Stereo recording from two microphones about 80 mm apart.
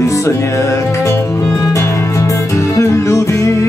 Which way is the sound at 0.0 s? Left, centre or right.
Left.